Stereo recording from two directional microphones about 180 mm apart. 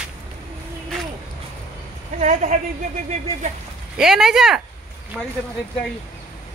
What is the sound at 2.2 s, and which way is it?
Speech, 40° right (ahead or behind).